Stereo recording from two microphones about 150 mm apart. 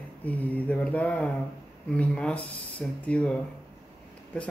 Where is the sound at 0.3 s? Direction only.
10° left (ahead or behind).